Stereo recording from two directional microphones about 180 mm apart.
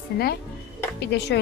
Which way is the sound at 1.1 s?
70° left (ahead or behind).